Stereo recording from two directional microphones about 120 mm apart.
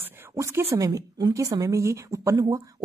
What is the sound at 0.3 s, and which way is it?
A woman's voice, 25° right (ahead or behind).